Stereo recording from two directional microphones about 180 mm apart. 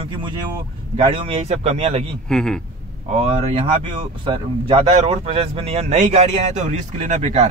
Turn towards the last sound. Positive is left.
turn(degrees=-40)  # may be behind; listen again after turning